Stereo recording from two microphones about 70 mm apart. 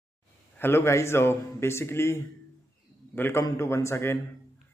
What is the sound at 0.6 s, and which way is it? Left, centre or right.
Speech, left.